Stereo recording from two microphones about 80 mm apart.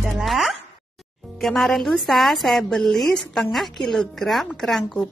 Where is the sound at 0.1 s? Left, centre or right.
Centre.